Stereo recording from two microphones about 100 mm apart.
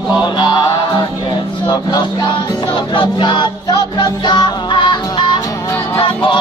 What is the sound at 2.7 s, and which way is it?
Music, 50° left (ahead or behind).